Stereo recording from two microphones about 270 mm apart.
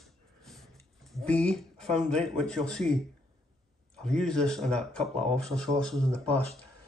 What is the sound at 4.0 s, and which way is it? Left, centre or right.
Speech, centre.